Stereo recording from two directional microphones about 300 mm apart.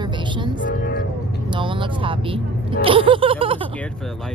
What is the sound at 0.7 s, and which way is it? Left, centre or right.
Speech, left.